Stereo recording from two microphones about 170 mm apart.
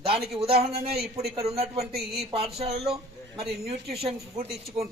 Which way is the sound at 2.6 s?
35° right (ahead or behind).